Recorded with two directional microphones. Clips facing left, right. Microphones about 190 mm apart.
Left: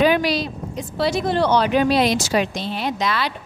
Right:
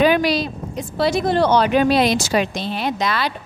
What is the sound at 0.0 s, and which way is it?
Speech, 55° right (ahead or behind).